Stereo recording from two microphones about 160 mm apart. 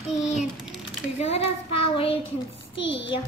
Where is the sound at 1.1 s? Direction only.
40° left (ahead or behind).